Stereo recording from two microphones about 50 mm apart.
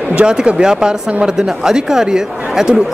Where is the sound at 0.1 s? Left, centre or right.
Right.